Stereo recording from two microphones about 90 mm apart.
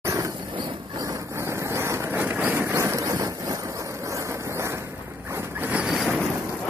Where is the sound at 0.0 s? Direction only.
35° right (ahead or behind).